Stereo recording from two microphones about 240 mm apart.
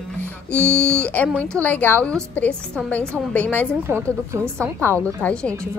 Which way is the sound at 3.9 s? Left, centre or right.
Centre.